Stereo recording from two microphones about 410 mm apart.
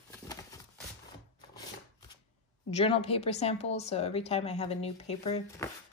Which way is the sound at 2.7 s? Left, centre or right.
Centre.